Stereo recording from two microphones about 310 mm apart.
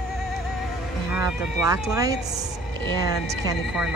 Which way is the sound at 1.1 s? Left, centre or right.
Centre.